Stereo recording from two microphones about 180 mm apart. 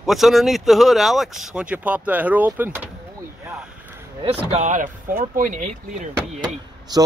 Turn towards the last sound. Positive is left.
turn(degrees=-20)  # may be behind; listen again after turning